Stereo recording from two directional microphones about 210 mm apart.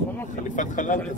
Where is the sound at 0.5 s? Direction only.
35° left (ahead or behind).